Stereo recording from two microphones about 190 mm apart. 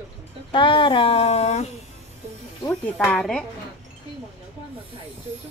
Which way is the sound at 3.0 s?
Centre (ahead or behind).